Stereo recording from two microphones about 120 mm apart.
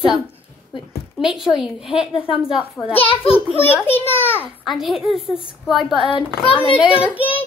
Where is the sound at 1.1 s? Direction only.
5° right (ahead or behind).